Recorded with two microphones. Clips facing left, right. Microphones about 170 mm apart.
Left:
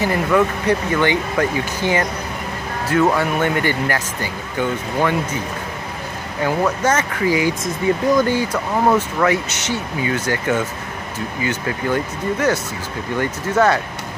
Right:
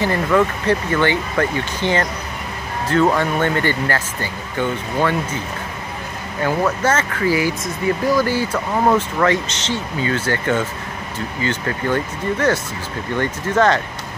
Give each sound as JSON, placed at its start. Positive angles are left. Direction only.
{"t": 0.0, "sound": "speech", "side_deg": 10}
{"t": 6.8, "sound": "speech", "side_deg": 15}